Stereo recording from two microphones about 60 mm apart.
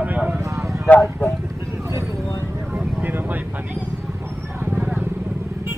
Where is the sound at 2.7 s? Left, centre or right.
Right.